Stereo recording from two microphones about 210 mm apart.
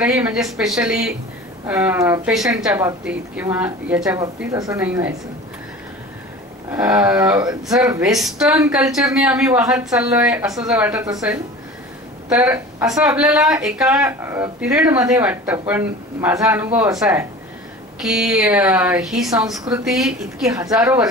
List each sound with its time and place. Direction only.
0.0 s a woman's voice: 5° right (ahead or behind)
6.7 s a woman's voice: 5° right (ahead or behind)
18.0 s speech: centre (ahead or behind)
20.4 s a woman's voice: 15° right (ahead or behind)